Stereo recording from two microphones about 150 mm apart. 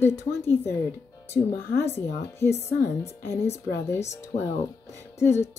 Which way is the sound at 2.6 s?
15° left (ahead or behind).